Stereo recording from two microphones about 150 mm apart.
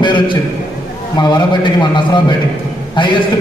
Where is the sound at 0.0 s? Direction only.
30° left (ahead or behind).